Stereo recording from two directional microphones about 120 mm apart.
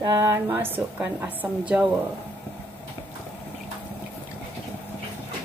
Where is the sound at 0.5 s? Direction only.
20° right (ahead or behind).